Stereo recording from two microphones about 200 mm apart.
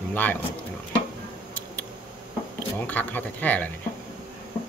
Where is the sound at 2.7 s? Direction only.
10° left (ahead or behind).